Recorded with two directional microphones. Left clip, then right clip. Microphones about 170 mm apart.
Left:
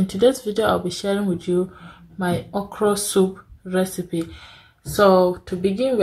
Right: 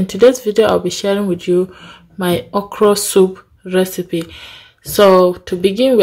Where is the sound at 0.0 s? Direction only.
20° right (ahead or behind).